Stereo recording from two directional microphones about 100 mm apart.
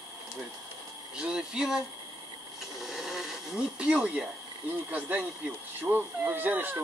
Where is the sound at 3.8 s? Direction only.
10° right (ahead or behind).